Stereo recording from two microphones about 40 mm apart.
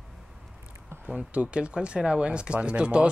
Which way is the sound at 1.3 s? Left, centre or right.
Right.